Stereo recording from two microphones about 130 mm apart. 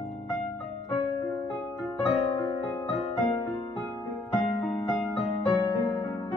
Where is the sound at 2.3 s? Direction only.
35° left (ahead or behind).